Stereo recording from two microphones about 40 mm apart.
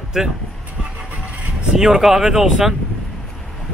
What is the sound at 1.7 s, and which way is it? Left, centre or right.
Speech, centre.